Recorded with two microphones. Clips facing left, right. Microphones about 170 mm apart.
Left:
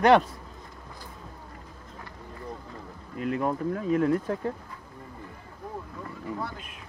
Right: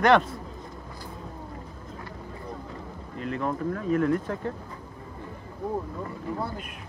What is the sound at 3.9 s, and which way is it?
Speech, 45° right (ahead or behind).